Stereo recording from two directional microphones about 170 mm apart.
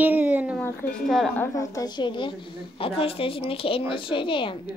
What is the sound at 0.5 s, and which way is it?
Speech, 5° left (ahead or behind).